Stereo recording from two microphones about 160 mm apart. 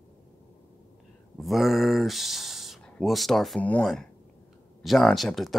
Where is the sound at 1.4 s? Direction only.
Centre (ahead or behind).